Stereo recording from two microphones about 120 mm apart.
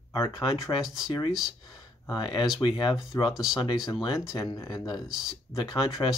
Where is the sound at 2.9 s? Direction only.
30° left (ahead or behind).